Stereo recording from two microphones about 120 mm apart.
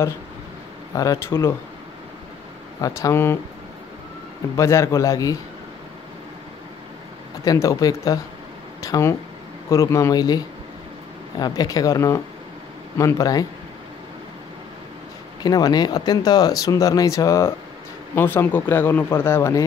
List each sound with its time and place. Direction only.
0.9 s speech: 30° left (ahead or behind)
2.8 s speech: 25° left (ahead or behind)
4.6 s speech: 25° left (ahead or behind)
7.4 s speech: 30° left (ahead or behind)
15.4 s speech: 35° left (ahead or behind)